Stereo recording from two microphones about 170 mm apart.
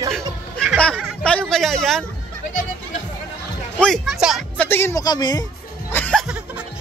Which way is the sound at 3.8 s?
Centre (ahead or behind).